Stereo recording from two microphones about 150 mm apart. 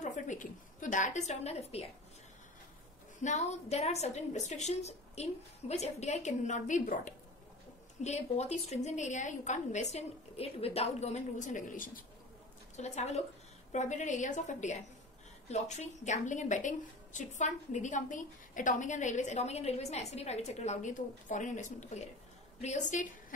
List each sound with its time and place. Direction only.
0.0 s a sound: 55° left (ahead or behind)
3.2 s a woman's voice: 50° left (ahead or behind)
12.7 s a woman's voice: 50° left (ahead or behind)